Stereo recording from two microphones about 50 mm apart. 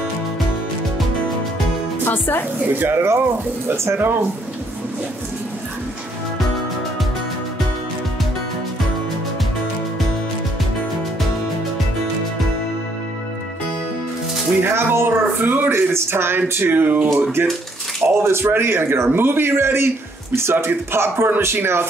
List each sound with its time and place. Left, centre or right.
2.0 s speech: left
2.8 s a man's voice: right
3.7 s speech: right
14.6 s a man's voice: right
15.4 s speech: right
15.7 s speech: right
17.1 s a man's voice: right